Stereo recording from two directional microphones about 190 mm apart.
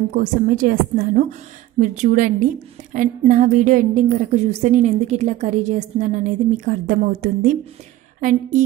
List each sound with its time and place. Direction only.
0.1 s a woman's voice: 45° right (ahead or behind)